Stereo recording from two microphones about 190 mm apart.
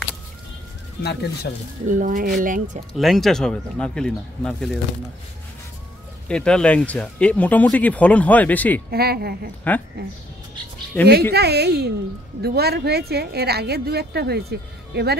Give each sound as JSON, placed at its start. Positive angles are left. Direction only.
{"t": 1.9, "sound": "speech", "side_deg": -45}
{"t": 3.0, "sound": "speech", "side_deg": 0}
{"t": 6.2, "sound": "speech", "side_deg": 5}
{"t": 8.9, "sound": "a woman's voice", "side_deg": -55}
{"t": 9.7, "sound": "speech", "side_deg": 10}
{"t": 10.9, "sound": "speech", "side_deg": 10}
{"t": 11.3, "sound": "a woman's voice", "side_deg": -60}